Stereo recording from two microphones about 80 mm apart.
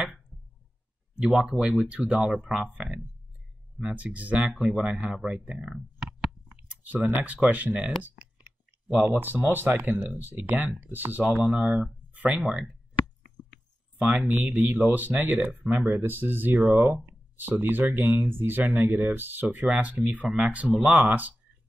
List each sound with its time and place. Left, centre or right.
1.1 s speech: centre
4.5 s speech: centre
6.5 s clicking: centre
7.3 s speech: centre
8.4 s clicking: centre
9.2 s speech: right
12.4 s a sound: centre
13.9 s speech: centre
14.2 s speech: right
15.9 s speech: right